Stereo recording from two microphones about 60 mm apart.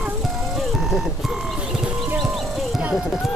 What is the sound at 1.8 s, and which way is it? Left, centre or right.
Clip-clop, right.